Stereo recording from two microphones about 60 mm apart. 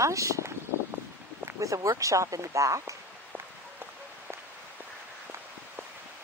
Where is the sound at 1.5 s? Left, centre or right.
Right.